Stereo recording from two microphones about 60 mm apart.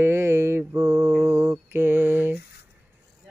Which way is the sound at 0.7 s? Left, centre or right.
Right.